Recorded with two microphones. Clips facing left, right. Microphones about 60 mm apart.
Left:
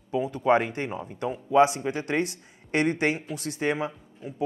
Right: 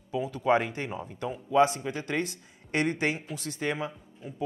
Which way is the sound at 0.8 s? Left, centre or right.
Centre.